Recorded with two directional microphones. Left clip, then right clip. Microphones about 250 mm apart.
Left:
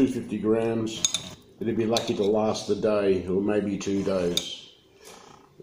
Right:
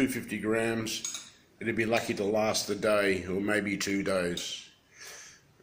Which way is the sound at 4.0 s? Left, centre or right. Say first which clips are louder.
Left 4 dB; right.